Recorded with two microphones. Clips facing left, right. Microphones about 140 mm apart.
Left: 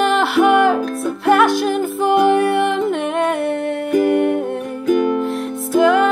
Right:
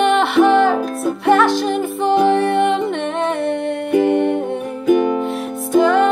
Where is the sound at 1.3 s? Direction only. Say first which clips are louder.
Even; 10° left (ahead or behind).